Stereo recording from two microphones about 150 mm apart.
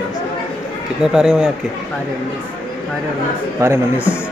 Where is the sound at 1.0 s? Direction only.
5° right (ahead or behind).